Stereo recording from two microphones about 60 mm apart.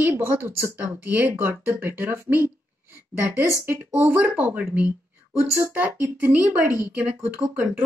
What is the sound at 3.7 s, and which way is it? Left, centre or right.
Speech, right.